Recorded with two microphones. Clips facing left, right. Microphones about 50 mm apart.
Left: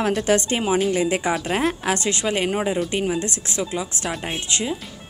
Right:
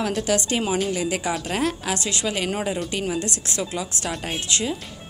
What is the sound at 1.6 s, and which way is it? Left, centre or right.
A woman's voice, left.